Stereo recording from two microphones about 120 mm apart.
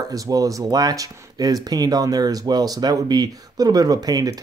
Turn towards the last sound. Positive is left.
turn(degrees=-30)  # may be behind; listen again after turning